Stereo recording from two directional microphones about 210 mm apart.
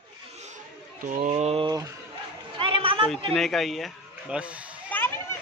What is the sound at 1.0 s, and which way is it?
Speech, 35° right (ahead or behind).